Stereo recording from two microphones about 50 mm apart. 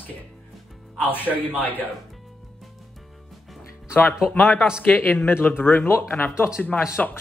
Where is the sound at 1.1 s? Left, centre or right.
Left.